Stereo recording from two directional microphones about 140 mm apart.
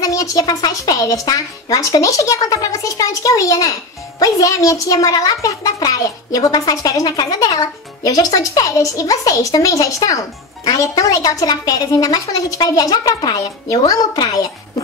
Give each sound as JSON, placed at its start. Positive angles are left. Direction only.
{"t": 0.0, "sound": "a child's voice", "side_deg": 25}